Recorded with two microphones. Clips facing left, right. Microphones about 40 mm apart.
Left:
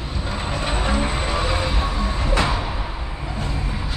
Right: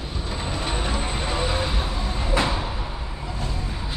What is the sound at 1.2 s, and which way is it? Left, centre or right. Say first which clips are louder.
Music: left 2 dB; centre.